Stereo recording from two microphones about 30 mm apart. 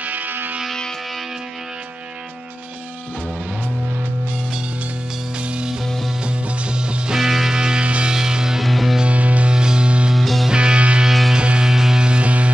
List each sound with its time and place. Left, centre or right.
0.0 s music: right
5.4 s music: right
7.2 s music: centre
7.5 s music: right
7.8 s music: right
8.1 s music: right
8.6 s music: centre
9.0 s music: right
9.5 s music: right
10.1 s music: centre
10.5 s music: right
11.6 s music: centre
12.0 s music: right
12.3 s music: right